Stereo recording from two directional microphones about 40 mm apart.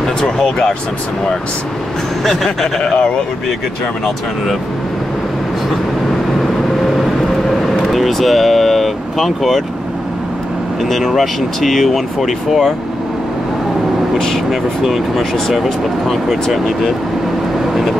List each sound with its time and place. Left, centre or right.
0.0 s speech: centre
2.2 s speech: centre
2.8 s speech: centre
7.6 s vehicle: centre
10.8 s speech: centre
14.1 s speech: centre
14.5 s speech: centre